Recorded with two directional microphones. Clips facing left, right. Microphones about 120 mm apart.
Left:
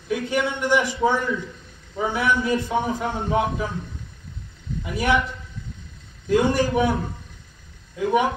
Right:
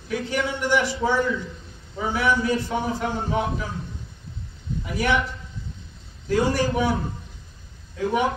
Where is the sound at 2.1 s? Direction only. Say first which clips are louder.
Right 1 dB; 20° left (ahead or behind).